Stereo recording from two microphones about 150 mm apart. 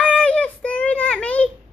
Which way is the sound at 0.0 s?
10° left (ahead or behind).